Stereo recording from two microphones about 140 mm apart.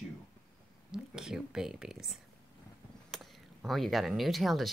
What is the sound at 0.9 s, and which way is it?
Speech, 5° right (ahead or behind).